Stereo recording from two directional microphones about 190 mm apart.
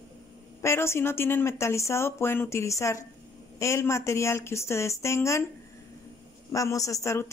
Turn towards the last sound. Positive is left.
turn(degrees=15)  # may be behind; listen again after turning